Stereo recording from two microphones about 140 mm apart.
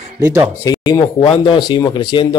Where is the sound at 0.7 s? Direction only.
25° left (ahead or behind).